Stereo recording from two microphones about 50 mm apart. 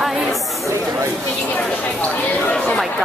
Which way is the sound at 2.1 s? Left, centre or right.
Left.